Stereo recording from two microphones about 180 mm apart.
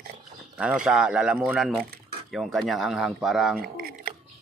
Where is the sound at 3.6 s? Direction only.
55° right (ahead or behind).